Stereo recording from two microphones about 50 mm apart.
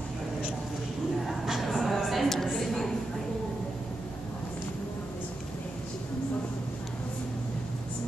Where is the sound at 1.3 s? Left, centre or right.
Centre.